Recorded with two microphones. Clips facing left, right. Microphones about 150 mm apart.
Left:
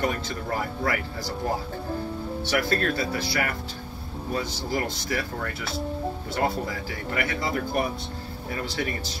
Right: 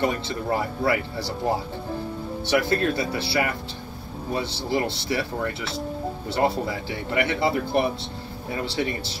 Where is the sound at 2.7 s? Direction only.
20° right (ahead or behind).